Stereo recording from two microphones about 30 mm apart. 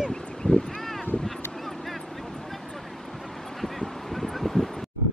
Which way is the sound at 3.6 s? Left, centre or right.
Centre.